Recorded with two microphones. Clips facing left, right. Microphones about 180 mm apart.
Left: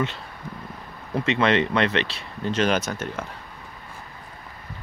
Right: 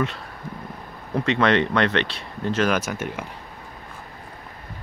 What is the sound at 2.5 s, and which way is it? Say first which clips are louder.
Speech: even; 25° left (ahead or behind).